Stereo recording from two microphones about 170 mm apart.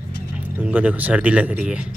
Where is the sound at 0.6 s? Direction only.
10° right (ahead or behind).